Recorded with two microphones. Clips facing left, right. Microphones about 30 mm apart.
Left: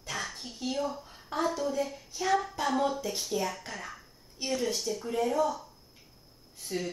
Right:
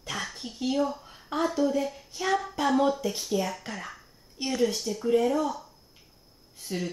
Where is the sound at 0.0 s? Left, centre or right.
Centre.